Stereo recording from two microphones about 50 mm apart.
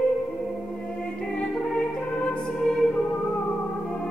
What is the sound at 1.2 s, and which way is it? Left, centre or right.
Music, centre.